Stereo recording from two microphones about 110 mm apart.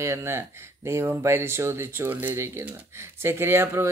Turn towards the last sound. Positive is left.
turn(degrees=-25)  # may be behind; listen again after turning